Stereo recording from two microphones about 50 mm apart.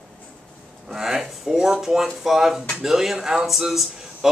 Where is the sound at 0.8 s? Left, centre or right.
Centre.